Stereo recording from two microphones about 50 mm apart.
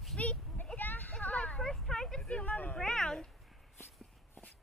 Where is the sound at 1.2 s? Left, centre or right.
Left.